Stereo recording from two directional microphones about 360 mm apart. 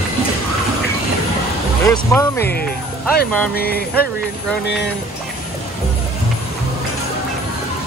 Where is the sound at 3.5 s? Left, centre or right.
Left.